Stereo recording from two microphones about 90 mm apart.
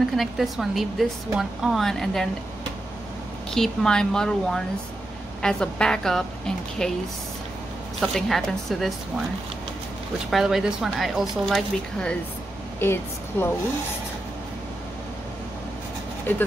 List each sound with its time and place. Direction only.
0.1 s a woman's voice: centre (ahead or behind)
3.4 s a woman's voice: 5° left (ahead or behind)
8.0 s a woman's voice: 5° left (ahead or behind)
10.3 s a woman's voice: 5° right (ahead or behind)
12.7 s speech: 25° left (ahead or behind)
16.3 s speech: 20° left (ahead or behind)